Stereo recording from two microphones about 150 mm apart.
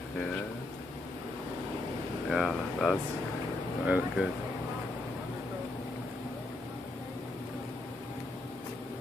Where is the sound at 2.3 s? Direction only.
Centre (ahead or behind).